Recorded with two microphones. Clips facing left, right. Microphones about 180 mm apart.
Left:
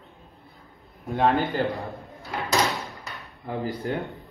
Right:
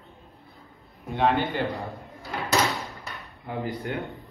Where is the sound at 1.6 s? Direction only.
Centre (ahead or behind).